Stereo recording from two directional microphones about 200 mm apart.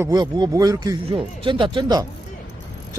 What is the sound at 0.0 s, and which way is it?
Speech, 20° right (ahead or behind).